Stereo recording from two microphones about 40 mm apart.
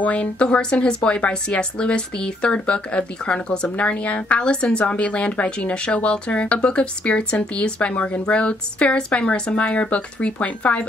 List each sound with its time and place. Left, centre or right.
0.0 s a woman's voice: left